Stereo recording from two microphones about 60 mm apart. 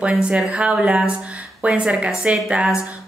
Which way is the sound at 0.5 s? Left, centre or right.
Centre.